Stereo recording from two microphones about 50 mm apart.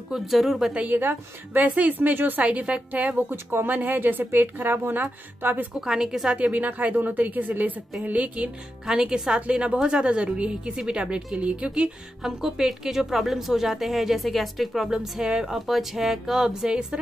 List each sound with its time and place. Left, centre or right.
0.1 s speech: centre
0.8 s a woman's voice: right
2.4 s a woman's voice: right
5.8 s speech: centre
6.3 s a woman's voice: right
8.8 s a woman's voice: centre
12.2 s a woman's voice: centre